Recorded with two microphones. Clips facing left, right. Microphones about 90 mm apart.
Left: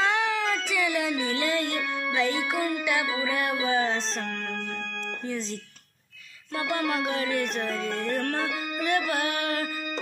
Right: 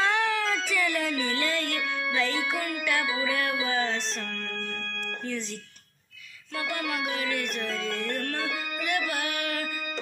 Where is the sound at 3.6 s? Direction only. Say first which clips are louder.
Left 3 dB; 30° left (ahead or behind).